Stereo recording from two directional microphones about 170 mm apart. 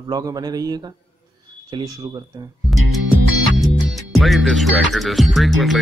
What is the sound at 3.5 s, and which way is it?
Music, centre (ahead or behind).